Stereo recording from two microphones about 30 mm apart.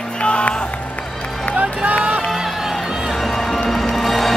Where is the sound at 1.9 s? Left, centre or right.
Right.